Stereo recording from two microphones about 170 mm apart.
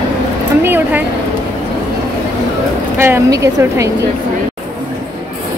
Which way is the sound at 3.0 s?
15° right (ahead or behind).